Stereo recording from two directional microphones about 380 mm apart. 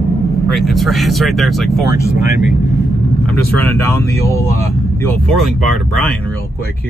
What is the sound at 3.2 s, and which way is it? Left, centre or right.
Speech, centre.